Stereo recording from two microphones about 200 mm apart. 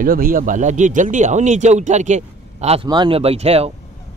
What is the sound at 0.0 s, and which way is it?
Speech, 45° right (ahead or behind).